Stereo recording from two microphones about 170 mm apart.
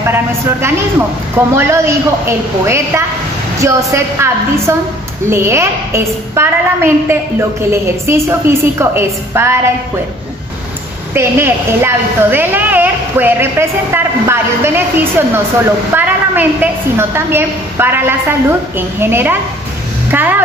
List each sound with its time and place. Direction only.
0.0 s a woman's voice: 15° right (ahead or behind)
11.1 s a woman's voice: 15° right (ahead or behind)